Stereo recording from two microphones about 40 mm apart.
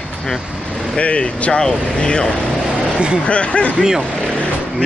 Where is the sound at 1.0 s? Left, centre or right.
Left.